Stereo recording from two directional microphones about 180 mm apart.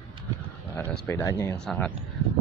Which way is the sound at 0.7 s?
15° left (ahead or behind).